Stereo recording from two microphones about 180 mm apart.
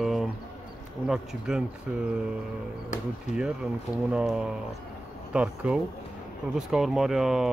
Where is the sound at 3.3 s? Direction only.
40° left (ahead or behind).